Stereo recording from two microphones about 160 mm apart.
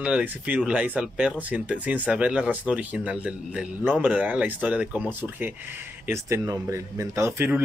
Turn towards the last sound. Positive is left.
turn(degrees=-15)  # may be behind; listen again after turning